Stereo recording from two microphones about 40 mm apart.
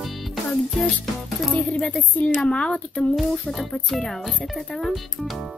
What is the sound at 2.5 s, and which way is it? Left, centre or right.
Speech, left.